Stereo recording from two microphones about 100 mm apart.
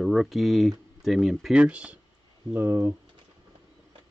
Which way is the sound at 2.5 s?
20° right (ahead or behind).